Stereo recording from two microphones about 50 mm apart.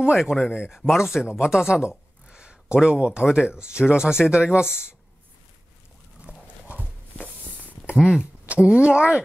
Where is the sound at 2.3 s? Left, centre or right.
Centre.